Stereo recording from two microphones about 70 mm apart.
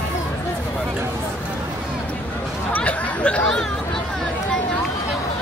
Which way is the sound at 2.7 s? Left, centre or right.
Centre.